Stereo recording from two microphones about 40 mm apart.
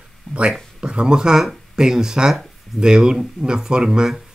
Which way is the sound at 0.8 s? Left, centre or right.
Right.